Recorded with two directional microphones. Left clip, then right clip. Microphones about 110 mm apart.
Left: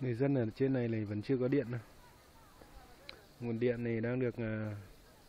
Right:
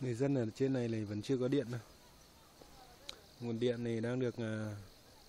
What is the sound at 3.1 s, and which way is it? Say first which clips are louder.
Speech: left 1 dB; 10° right (ahead or behind).